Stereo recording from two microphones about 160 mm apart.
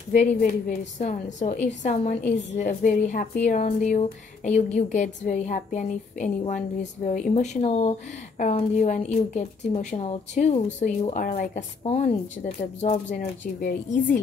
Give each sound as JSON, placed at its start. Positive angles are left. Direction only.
{"t": 0.4, "sound": "a woman's voice", "side_deg": 50}
{"t": 11.1, "sound": "speech", "side_deg": 55}
{"t": 11.8, "sound": "speech", "side_deg": 40}
{"t": 13.1, "sound": "speech", "side_deg": 55}